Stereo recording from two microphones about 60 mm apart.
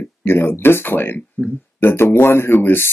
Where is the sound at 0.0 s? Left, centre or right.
Left.